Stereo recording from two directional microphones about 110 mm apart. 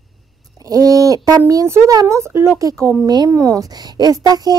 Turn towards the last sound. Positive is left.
turn(degrees=-35)  # may be behind; listen again after turning